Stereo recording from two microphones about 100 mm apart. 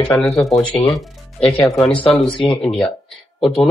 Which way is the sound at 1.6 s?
35° left (ahead or behind).